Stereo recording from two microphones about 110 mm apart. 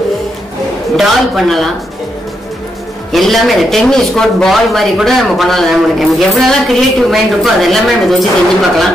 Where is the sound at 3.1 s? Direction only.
Centre (ahead or behind).